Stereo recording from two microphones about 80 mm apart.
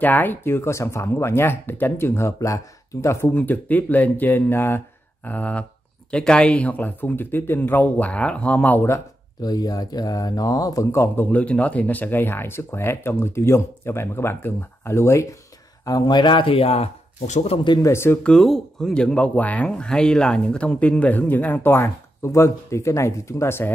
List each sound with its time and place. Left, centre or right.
0.0 s speech: left
3.3 s speech: left
9.4 s speech: left
10.9 s speech: left
11.3 s speech: centre; by 15.2 s left
15.8 s speech: left
17.8 s speech: left
18.2 s speech: centre; by 23.7 s left